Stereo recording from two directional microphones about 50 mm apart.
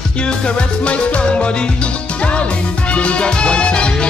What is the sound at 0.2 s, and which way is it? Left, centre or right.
Music, centre.